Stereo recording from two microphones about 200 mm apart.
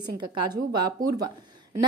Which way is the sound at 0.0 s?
20° right (ahead or behind).